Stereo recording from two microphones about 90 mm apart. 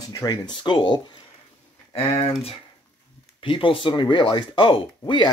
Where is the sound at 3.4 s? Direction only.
70° left (ahead or behind).